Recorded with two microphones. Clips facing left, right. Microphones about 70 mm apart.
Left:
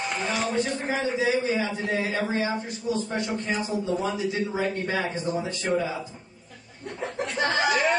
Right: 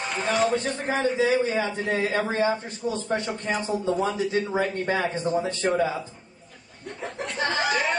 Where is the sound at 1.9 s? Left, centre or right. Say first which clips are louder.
Right 2 dB; right.